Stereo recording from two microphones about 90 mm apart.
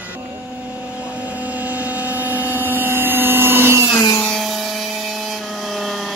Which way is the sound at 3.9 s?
40° left (ahead or behind).